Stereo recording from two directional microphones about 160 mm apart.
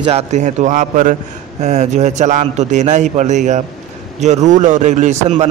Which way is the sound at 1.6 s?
45° right (ahead or behind).